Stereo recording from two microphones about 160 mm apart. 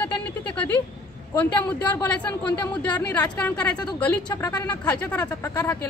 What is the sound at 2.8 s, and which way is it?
A woman's voice, 10° left (ahead or behind).